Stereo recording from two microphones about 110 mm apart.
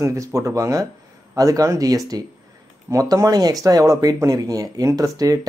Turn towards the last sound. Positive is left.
turn(degrees=-35)  # may be behind; listen again after turning